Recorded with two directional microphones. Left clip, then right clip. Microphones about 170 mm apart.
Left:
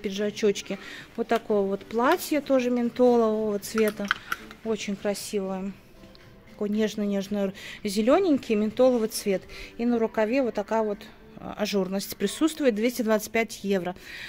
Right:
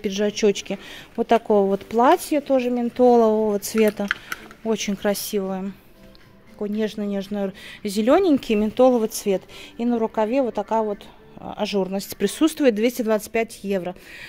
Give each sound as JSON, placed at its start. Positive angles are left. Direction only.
{"t": 0.0, "sound": "speech", "side_deg": -30}
{"t": 6.6, "sound": "speech", "side_deg": -10}